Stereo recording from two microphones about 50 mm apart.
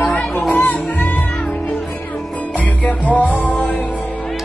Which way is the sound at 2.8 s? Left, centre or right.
Left.